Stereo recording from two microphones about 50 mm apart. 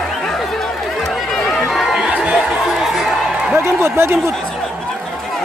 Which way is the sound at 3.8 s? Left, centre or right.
Right.